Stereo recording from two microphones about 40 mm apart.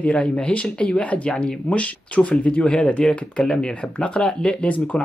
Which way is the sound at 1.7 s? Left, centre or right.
Left.